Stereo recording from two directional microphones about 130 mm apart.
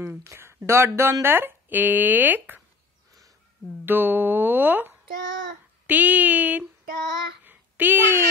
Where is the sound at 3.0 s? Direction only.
25° right (ahead or behind).